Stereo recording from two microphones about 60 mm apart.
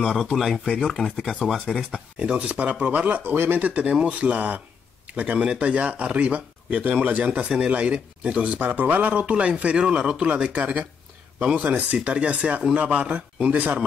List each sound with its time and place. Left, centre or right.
0.2 s speech: centre
2.1 s speech: centre